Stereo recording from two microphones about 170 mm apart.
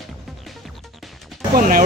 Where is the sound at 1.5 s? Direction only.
50° right (ahead or behind).